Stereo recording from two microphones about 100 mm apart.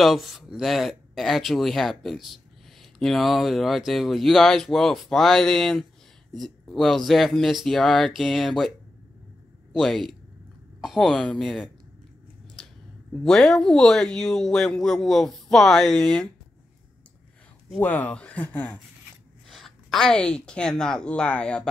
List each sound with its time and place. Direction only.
0.0 s speech: centre (ahead or behind)
9.8 s speech: centre (ahead or behind)
13.1 s speech: 10° left (ahead or behind)
17.7 s speech: 15° left (ahead or behind)
19.5 s a woman's voice: 5° left (ahead or behind)